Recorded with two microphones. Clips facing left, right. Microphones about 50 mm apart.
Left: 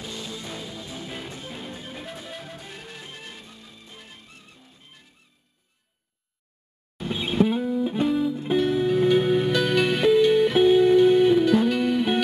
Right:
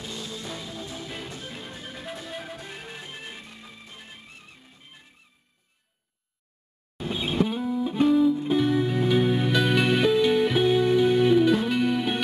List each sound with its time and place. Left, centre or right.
0.4 s music: centre
7.3 s music: centre